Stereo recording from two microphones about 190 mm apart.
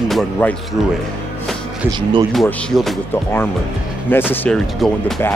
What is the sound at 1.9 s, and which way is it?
Speech, 25° right (ahead or behind).